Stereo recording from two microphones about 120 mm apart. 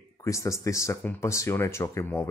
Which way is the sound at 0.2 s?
25° left (ahead or behind).